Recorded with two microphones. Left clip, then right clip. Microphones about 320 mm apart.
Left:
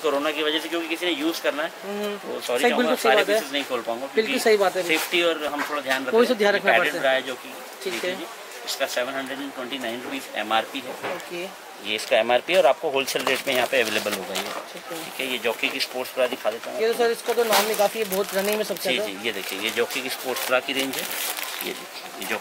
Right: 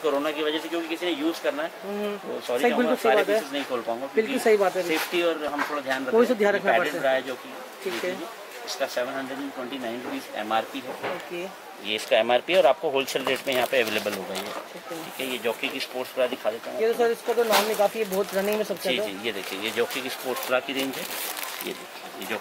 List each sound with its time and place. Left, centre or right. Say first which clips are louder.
0.0 s speech: left 2 dB; centre
8.7 s speech: left 2 dB; centre